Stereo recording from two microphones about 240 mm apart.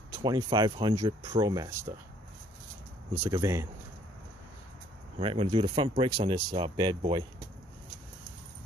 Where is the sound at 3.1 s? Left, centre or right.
Centre.